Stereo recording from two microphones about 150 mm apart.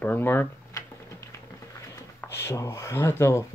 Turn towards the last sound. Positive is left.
turn(degrees=20)  # may be behind; listen again after turning